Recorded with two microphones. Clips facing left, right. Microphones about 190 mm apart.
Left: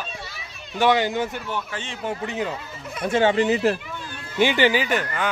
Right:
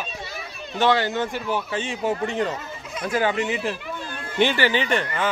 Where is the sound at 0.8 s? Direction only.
15° left (ahead or behind).